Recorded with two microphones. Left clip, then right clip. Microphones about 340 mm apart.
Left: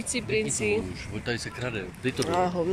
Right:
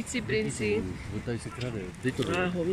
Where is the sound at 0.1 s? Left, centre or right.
Centre.